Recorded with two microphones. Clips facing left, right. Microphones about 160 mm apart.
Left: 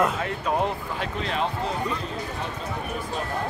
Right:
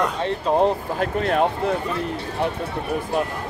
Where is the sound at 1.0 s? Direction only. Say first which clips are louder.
Right 8 dB; 55° right (ahead or behind).